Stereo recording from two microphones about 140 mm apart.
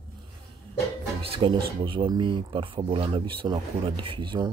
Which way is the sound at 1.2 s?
40° right (ahead or behind).